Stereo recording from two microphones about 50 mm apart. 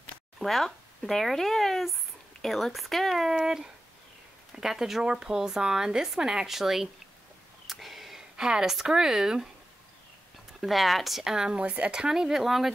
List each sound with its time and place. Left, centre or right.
0.4 s speech: centre
7.6 s a sound: centre
10.6 s speech: centre
11.6 s speech: right
11.9 s speech: centre